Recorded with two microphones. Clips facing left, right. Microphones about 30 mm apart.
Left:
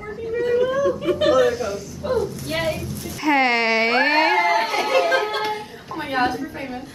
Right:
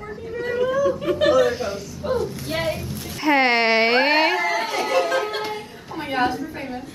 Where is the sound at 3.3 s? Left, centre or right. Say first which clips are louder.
Right 1 dB; centre.